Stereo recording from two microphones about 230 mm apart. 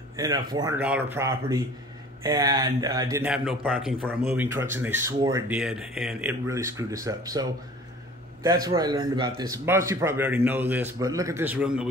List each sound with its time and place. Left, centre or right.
0.1 s a man's voice: centre
5.6 s a man's voice: centre
8.6 s a man's voice: centre